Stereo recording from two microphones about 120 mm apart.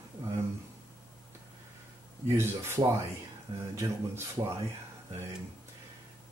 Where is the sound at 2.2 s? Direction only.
20° right (ahead or behind).